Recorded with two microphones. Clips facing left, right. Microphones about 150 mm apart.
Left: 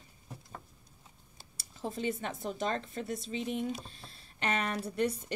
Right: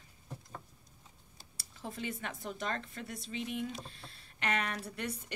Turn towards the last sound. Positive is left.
turn(degrees=25)  # may be behind; listen again after turning